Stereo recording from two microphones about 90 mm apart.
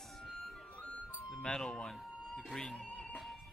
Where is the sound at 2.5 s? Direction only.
5° left (ahead or behind).